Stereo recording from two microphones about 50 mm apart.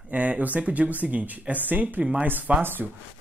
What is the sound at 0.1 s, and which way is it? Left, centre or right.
Speech, right.